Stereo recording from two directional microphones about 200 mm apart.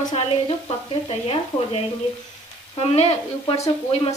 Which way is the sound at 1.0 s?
30° left (ahead or behind).